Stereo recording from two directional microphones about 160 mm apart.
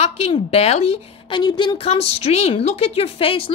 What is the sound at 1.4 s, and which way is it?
A woman's voice, 25° left (ahead or behind).